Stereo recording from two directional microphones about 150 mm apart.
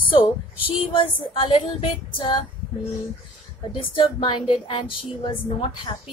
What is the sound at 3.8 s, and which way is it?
A woman's voice, 35° left (ahead or behind).